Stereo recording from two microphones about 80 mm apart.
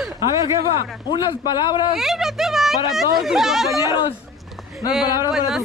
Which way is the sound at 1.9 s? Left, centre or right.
Centre.